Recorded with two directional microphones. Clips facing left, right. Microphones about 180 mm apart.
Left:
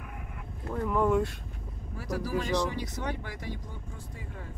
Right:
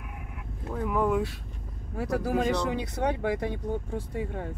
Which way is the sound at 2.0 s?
60° right (ahead or behind).